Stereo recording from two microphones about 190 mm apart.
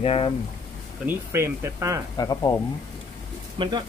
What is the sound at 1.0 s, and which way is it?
Speech, 15° right (ahead or behind).